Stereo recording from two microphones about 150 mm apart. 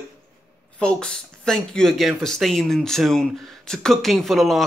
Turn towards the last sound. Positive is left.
turn(degrees=0)  # may be behind; listen again after turning